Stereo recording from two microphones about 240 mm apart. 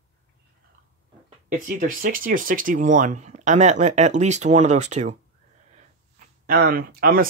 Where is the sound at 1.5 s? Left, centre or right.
Right.